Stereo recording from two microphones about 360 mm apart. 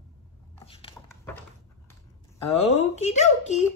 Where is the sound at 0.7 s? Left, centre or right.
Centre.